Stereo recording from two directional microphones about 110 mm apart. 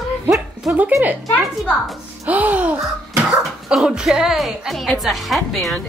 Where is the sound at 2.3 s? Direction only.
15° right (ahead or behind).